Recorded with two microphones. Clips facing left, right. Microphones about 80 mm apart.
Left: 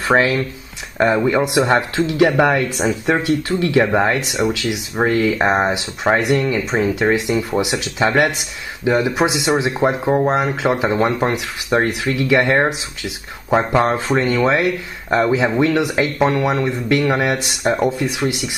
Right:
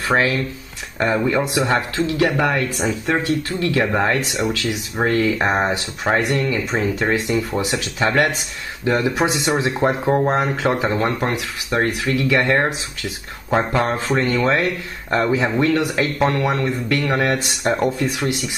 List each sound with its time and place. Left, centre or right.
0.1 s speech: left
0.9 s speech: centre